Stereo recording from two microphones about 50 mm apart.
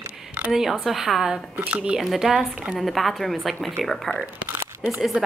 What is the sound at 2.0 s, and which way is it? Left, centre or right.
A woman's voice, centre.